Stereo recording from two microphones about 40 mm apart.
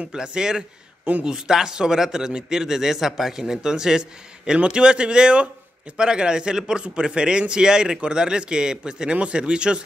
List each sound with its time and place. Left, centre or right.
0.0 s a man's voice: centre